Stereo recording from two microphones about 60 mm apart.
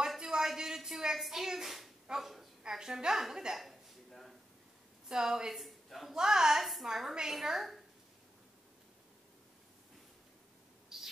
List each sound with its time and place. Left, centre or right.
0.0 s a sound: centre
5.0 s a woman's voice: centre
10.9 s bird: centre